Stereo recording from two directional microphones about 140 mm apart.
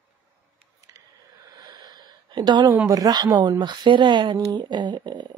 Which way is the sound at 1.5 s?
30° right (ahead or behind).